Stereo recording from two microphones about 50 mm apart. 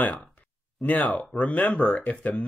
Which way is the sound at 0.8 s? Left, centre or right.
Left.